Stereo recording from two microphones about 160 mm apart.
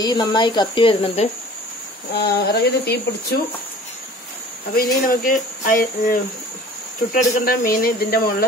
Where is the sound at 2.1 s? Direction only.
85° left.